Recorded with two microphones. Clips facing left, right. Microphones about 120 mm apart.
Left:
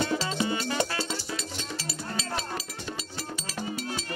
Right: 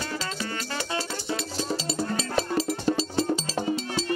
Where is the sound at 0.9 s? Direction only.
30° right (ahead or behind).